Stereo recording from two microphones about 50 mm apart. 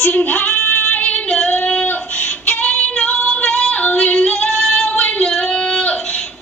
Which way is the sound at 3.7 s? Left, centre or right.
Left.